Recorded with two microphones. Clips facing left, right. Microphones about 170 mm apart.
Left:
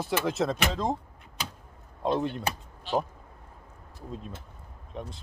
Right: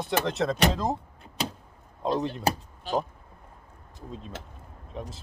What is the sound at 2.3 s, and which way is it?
Speech, 40° right (ahead or behind).